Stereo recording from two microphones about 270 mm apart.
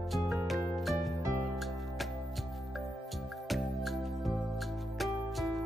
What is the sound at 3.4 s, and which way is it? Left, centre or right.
Music, centre.